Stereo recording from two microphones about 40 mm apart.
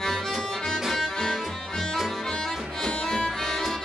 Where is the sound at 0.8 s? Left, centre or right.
Centre.